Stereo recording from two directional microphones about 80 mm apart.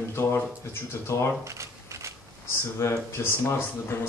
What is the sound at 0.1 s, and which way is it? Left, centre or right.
Speech, left.